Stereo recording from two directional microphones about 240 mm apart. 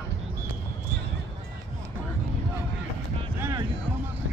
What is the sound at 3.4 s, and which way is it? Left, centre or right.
Music, centre.